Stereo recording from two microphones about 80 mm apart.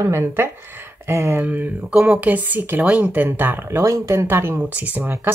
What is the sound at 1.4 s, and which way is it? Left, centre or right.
Speech, right.